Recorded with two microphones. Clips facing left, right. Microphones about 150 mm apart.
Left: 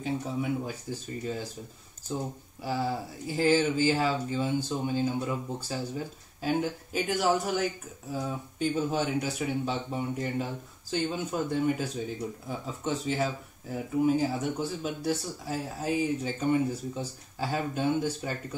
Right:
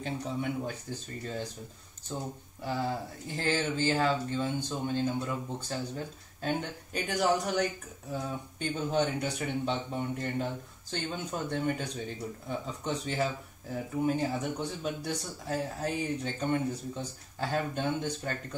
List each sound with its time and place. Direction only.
0.0 s speech: 5° left (ahead or behind)
3.3 s speech: 10° left (ahead or behind)